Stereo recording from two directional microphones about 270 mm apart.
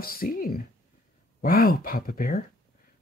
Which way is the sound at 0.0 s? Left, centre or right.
Left.